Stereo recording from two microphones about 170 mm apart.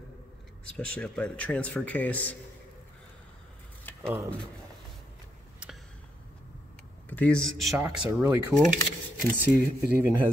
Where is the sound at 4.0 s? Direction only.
15° right (ahead or behind).